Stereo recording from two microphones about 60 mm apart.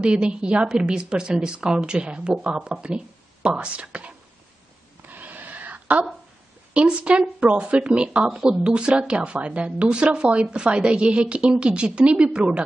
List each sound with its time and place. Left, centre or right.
0.0 s a woman's voice: centre
5.0 s a sound: right
6.7 s a woman's voice: right